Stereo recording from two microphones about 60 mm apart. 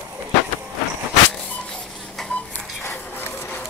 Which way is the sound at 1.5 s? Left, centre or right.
Centre.